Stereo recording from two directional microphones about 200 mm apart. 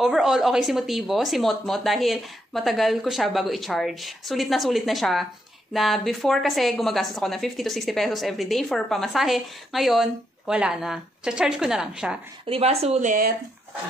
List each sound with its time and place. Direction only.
0.0 s a woman's voice: centre (ahead or behind)
12.4 s speech: 30° right (ahead or behind)